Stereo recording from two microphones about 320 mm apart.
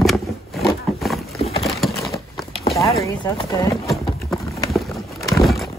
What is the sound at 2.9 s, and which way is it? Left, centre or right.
Clip-clop, centre.